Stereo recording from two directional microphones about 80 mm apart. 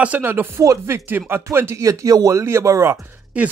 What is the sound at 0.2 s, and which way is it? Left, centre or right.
Speech, right.